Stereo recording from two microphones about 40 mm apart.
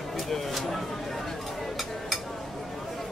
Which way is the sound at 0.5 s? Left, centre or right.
Centre.